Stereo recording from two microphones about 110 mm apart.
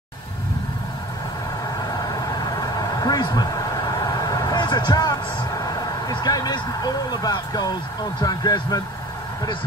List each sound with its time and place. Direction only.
2.6 s vehicle: 35° left (ahead or behind)
5.8 s speech: 35° left (ahead or behind)